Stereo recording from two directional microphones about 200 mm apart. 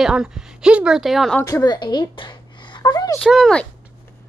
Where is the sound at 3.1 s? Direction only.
Centre (ahead or behind).